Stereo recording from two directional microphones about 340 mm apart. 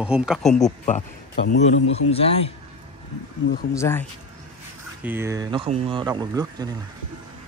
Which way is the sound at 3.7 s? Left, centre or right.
Centre.